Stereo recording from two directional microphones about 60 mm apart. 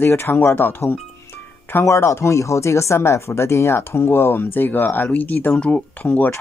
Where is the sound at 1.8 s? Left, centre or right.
Left.